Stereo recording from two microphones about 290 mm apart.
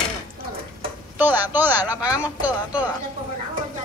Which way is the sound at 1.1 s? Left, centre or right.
Centre.